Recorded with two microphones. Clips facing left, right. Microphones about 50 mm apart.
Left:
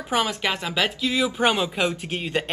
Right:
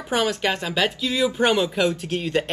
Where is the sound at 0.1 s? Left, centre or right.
Centre.